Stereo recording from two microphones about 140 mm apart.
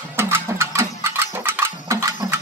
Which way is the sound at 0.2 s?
20° right (ahead or behind).